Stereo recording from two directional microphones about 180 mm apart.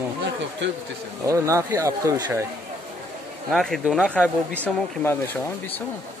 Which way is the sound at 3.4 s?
Centre (ahead or behind).